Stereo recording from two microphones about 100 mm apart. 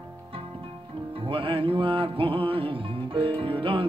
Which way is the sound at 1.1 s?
65° right (ahead or behind).